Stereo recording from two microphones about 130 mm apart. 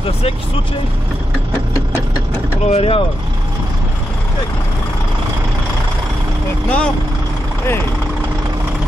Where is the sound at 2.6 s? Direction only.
50° left (ahead or behind).